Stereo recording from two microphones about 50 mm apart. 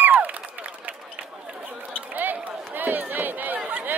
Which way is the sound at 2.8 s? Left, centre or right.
Right.